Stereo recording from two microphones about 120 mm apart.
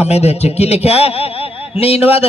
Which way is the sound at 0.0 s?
60° left (ahead or behind).